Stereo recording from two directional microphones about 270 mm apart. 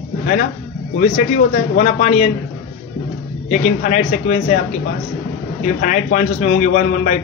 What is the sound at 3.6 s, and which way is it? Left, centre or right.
Speech, left.